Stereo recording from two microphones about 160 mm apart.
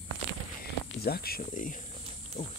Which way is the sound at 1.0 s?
70° left (ahead or behind).